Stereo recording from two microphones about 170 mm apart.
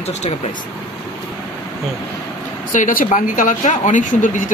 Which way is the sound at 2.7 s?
50° left (ahead or behind).